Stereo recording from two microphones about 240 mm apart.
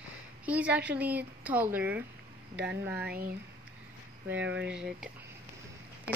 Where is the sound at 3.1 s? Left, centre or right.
Right.